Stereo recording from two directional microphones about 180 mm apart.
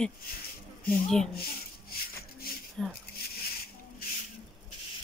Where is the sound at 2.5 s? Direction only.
55° left (ahead or behind).